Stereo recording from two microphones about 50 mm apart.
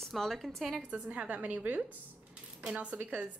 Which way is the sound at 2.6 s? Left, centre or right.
Right.